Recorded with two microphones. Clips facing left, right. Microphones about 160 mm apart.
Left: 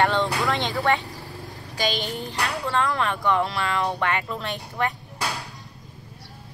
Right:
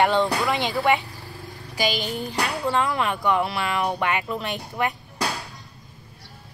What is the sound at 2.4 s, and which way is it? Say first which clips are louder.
Speech: right 1 dB; 20° right (ahead or behind).